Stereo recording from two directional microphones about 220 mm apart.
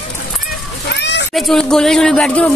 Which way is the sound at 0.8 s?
50° left (ahead or behind).